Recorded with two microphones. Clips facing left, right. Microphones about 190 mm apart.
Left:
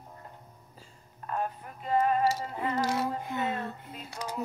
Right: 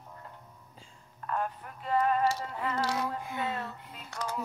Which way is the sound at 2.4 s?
20° left (ahead or behind).